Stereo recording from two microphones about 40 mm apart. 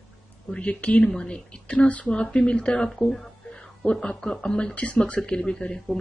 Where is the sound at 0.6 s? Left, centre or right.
Left.